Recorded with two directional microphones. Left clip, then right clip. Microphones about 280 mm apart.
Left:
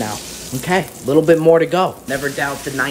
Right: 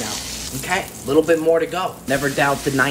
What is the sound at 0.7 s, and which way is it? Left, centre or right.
Speech, left.